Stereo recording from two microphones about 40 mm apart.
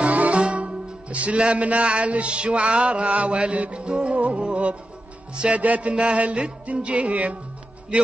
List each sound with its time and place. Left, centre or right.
0.0 s music: right
5.6 s music: right